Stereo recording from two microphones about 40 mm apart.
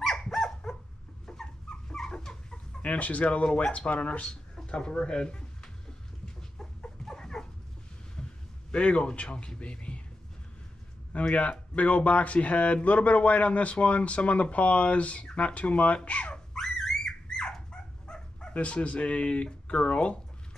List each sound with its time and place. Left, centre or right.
0.0 s dog: centre
2.8 s speech: left
4.6 s speech: left
6.2 s chicken: centre
8.2 s a sound: centre
8.7 s speech: left
11.1 s speech: left
16.5 s a sound: centre
18.0 s dog: centre
18.5 s speech: left